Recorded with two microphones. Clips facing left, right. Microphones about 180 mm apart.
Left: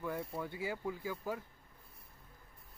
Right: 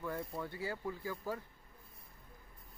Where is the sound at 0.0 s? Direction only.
5° left (ahead or behind).